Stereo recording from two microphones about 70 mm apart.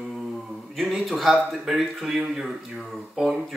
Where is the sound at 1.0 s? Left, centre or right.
Centre.